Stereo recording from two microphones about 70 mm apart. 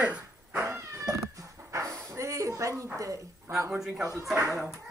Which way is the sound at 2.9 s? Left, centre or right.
Right.